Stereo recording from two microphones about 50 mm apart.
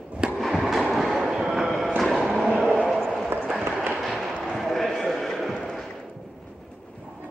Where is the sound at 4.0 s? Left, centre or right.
Centre.